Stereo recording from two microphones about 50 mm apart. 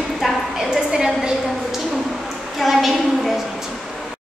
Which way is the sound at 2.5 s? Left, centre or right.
Centre.